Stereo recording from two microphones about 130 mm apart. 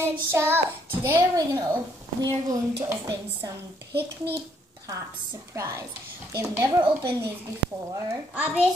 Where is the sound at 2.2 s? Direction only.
25° right (ahead or behind).